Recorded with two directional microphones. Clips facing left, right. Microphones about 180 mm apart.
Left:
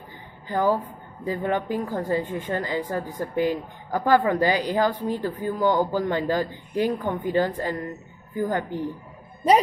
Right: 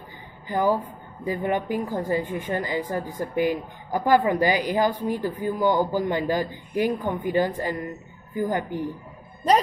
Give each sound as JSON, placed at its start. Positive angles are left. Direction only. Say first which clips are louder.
{"t": 0.5, "sound": "speech", "louder": "even", "side_deg": -15}